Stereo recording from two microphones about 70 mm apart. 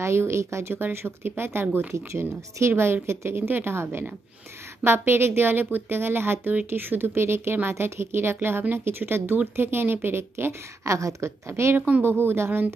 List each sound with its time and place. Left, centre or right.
0.0 s speech: right
11.0 s speech: right